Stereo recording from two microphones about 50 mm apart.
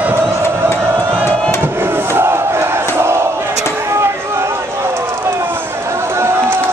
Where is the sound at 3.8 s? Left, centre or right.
Right.